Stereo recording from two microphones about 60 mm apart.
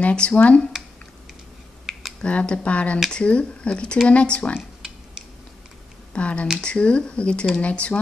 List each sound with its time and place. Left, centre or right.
0.0 s speech: centre
1.9 s a sound: centre
2.2 s speech: centre
6.1 s speech: centre